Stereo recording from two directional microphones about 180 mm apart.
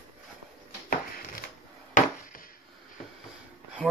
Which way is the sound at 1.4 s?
50° left (ahead or behind).